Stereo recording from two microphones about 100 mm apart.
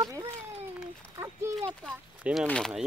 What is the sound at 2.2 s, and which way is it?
Speech, 10° right (ahead or behind).